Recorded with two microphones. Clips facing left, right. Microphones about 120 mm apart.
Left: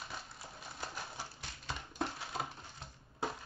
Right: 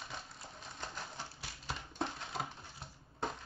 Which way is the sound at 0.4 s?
5° left (ahead or behind).